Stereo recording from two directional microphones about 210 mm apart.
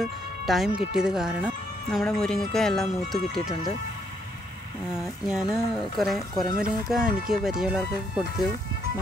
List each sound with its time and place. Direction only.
0.0 s speech: centre (ahead or behind)
3.2 s speech: 25° left (ahead or behind)
5.0 s speech: centre (ahead or behind)